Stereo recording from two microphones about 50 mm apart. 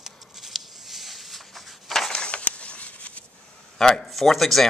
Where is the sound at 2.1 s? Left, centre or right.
Left.